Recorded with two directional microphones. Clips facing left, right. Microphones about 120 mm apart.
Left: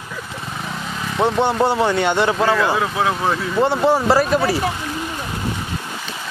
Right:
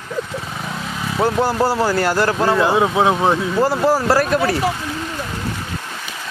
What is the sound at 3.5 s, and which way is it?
Speech, centre (ahead or behind).